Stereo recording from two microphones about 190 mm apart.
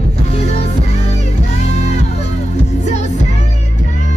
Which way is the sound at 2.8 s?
40° left (ahead or behind).